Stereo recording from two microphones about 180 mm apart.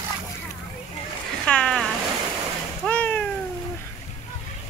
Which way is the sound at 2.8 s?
5° left (ahead or behind).